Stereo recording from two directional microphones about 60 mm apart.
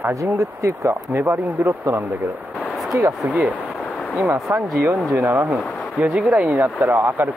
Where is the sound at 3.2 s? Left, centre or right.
Right.